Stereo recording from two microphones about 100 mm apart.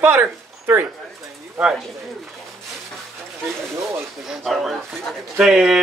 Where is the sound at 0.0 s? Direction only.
20° right (ahead or behind).